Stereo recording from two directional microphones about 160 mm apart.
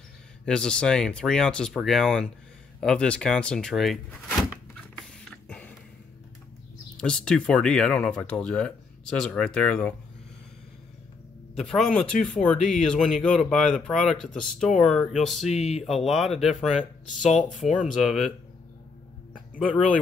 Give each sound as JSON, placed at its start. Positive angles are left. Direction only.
{"t": 0.5, "sound": "speech", "side_deg": 5}
{"t": 4.9, "sound": "a sound", "side_deg": 0}
{"t": 7.0, "sound": "speech", "side_deg": 5}
{"t": 11.5, "sound": "speech", "side_deg": 0}
{"t": 15.4, "sound": "speech", "side_deg": 40}
{"t": 16.0, "sound": "speech", "side_deg": 0}